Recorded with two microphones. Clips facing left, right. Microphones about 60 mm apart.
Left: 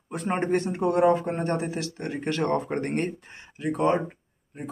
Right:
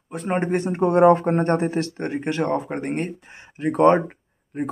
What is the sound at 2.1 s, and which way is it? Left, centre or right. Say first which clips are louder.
Speech: right 2 dB; centre.